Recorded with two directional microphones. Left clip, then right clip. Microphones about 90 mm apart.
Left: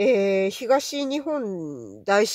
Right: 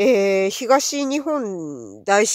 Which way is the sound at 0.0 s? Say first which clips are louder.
Right 4 dB; 50° right (ahead or behind).